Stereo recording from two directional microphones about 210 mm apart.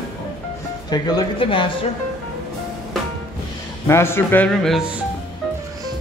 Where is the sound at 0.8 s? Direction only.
20° left (ahead or behind).